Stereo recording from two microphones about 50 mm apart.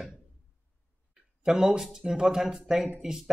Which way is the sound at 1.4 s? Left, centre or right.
Centre.